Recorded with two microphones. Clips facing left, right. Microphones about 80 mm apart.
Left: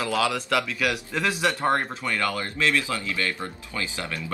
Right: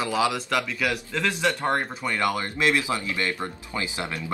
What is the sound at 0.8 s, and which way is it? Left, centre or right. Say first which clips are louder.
Speech: even; centre.